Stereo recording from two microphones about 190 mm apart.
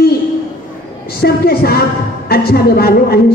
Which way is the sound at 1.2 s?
55° left (ahead or behind).